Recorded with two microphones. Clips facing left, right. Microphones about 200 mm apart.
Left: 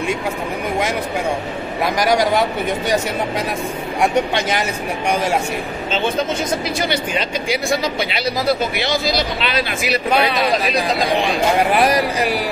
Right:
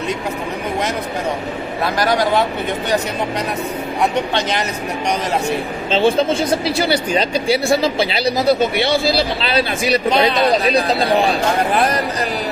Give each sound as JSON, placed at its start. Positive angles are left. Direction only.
{"t": 2.0, "sound": "speech", "side_deg": 15}
{"t": 4.4, "sound": "speech", "side_deg": 10}
{"t": 5.9, "sound": "speech", "side_deg": -30}
{"t": 11.0, "sound": "speech", "side_deg": -35}
{"t": 11.7, "sound": "speech", "side_deg": 10}